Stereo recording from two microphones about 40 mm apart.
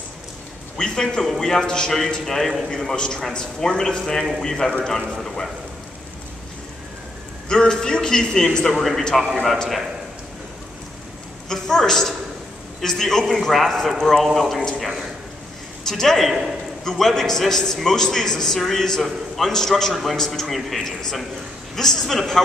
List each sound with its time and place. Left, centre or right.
0.7 s a man's voice: centre
1.2 s a man's voice: centre
7.4 s a man's voice: centre
8.7 s a man's voice: centre
11.4 s a man's voice: centre
15.9 s a man's voice: centre
16.3 s a man's voice: centre
16.8 s a man's voice: centre